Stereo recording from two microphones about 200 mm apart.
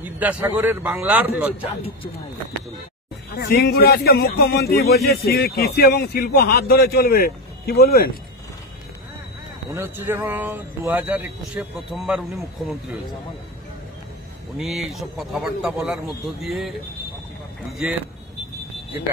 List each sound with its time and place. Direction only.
0.0 s speech: 10° right (ahead or behind)
3.3 s a man's voice: 50° left (ahead or behind)
9.8 s speech: 10° right (ahead or behind)
14.6 s speech: centre (ahead or behind)